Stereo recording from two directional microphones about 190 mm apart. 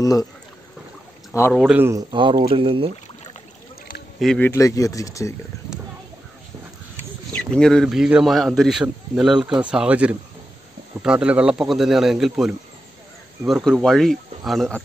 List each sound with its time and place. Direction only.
0.0 s speech: 20° left (ahead or behind)
1.5 s a man's voice: centre (ahead or behind)
1.8 s speech: 15° right (ahead or behind)
2.1 s speech: 25° right (ahead or behind)
4.2 s speech: 5° left (ahead or behind)
7.5 s a man's voice: 5° left (ahead or behind)